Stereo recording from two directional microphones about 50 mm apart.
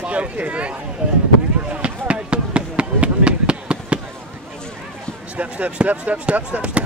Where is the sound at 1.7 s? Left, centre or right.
Right.